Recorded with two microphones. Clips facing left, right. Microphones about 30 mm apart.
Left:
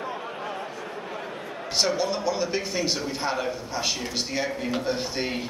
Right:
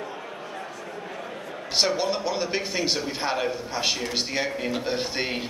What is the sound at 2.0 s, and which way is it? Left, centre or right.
A man's voice, right.